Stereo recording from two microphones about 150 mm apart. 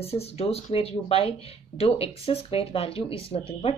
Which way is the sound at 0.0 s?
45° left (ahead or behind).